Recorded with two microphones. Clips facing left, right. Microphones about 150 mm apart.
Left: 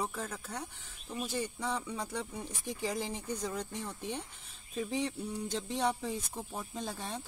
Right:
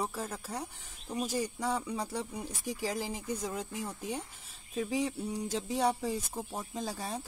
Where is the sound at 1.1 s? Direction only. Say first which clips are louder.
Right 3 dB; 40° right (ahead or behind).